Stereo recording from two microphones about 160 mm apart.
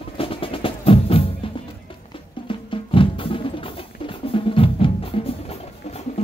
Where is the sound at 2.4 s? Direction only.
35° left (ahead or behind).